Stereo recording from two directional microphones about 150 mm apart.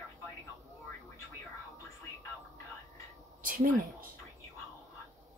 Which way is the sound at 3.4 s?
65° right (ahead or behind).